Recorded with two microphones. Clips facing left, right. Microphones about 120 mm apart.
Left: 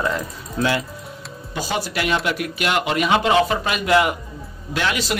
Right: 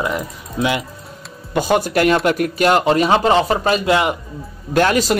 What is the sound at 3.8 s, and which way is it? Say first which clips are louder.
Speech: left 2 dB; 25° right (ahead or behind).